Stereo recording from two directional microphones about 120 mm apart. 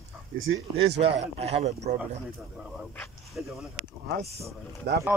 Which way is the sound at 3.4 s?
10° right (ahead or behind).